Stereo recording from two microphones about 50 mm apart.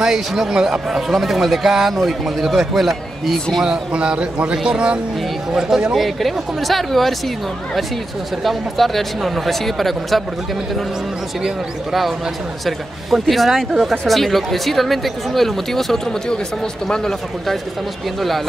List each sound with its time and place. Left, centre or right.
0.0 s speech: centre
3.6 s a man's voice: centre
5.9 s speech: centre
8.5 s speech: centre
11.4 s a man's voice: centre